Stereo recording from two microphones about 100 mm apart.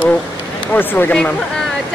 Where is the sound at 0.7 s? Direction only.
20° left (ahead or behind).